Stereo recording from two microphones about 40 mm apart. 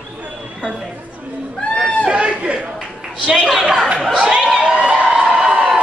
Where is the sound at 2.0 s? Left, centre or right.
Right.